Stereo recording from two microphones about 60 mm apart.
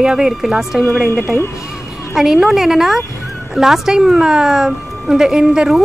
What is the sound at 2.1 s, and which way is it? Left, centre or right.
A woman's voice, centre.